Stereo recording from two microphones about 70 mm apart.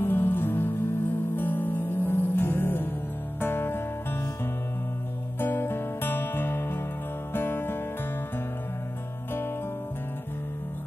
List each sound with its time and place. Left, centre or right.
0.0 s music: left
5.4 s music: left